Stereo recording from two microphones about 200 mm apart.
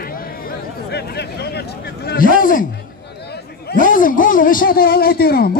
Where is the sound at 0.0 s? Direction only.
45° left (ahead or behind).